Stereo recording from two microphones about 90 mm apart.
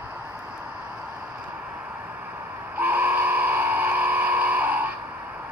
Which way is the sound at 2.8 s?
20° right (ahead or behind).